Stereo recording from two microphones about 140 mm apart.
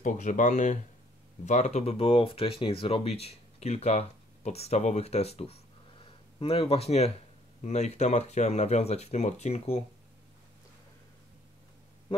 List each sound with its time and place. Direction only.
0.0 s speech: 65° left (ahead or behind)